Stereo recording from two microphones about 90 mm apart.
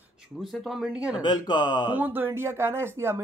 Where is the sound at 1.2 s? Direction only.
55° left (ahead or behind).